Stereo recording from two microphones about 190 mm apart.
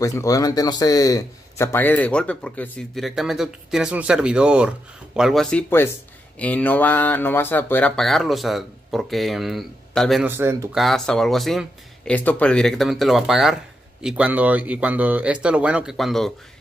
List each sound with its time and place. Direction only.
0.0 s a man's voice: 15° left (ahead or behind); by 10.2 s centre (ahead or behind)
10.2 s speech: 10° right (ahead or behind)
10.8 s speech: centre (ahead or behind)